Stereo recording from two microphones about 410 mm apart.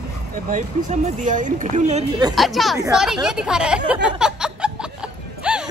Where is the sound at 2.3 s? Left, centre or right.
Centre.